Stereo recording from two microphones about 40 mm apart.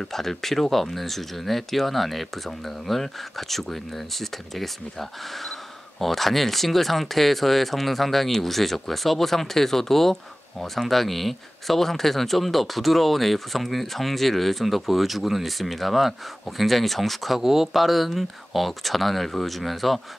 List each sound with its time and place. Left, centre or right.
0.0 s speech: centre
5.9 s speech: centre